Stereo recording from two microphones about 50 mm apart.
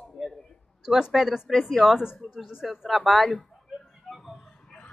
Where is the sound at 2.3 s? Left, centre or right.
Centre.